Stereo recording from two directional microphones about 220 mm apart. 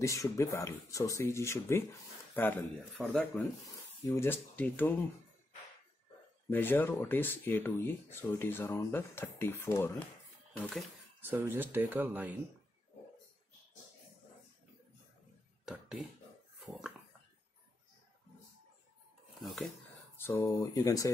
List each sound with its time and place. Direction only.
0.0 s speech: 15° left (ahead or behind)
3.1 s speech: 5° left (ahead or behind)
6.5 s speech: 10° left (ahead or behind)
11.1 s speech: 10° right (ahead or behind)
15.6 s speech: centre (ahead or behind)
19.4 s speech: centre (ahead or behind)
20.2 s speech: 10° left (ahead or behind)